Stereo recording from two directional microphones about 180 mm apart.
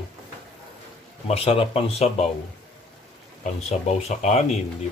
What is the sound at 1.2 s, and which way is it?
Speech, 35° left (ahead or behind).